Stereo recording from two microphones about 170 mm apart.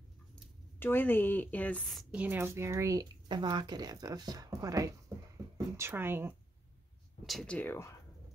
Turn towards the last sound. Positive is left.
turn(degrees=10)  # may be behind; listen again after turning